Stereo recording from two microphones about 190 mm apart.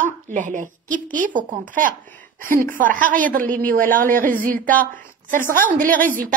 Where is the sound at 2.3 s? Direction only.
45° right (ahead or behind).